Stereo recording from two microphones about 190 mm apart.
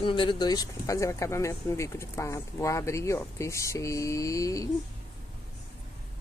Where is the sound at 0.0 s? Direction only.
25° left (ahead or behind).